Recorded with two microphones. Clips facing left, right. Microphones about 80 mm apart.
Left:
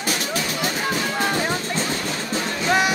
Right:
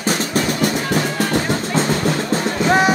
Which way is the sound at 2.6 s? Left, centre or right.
Right.